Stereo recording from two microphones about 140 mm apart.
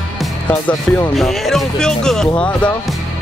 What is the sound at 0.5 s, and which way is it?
Speech, 10° left (ahead or behind).